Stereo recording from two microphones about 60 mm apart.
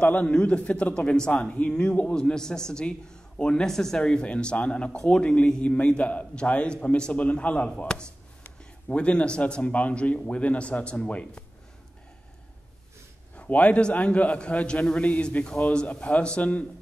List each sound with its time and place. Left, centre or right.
0.0 s speech: left
4.0 s a man's voice: centre
13.4 s a man's voice: left